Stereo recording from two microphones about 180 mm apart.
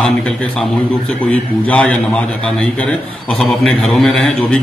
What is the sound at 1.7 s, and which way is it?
Speech, 5° left (ahead or behind).